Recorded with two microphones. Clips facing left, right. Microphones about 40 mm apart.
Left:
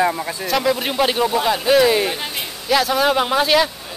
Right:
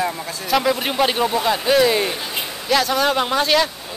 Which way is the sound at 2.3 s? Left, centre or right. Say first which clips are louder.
Right 1 dB; centre.